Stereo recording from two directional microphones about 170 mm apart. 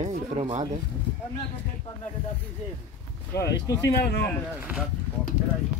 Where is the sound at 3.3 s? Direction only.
20° left (ahead or behind).